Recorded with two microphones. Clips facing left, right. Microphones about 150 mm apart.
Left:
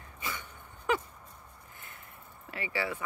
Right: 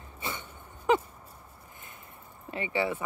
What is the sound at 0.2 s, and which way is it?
Dog, 25° right (ahead or behind).